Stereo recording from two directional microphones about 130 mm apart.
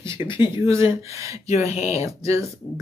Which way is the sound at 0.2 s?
35° left (ahead or behind).